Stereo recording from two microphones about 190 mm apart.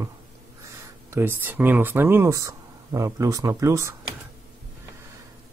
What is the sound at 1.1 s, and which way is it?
Speech, 10° right (ahead or behind).